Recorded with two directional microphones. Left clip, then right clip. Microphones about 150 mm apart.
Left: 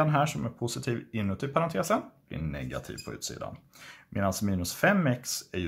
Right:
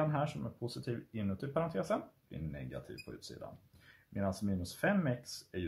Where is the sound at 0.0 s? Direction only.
25° left (ahead or behind).